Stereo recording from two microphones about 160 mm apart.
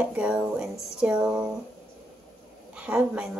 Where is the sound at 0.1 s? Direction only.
5° right (ahead or behind).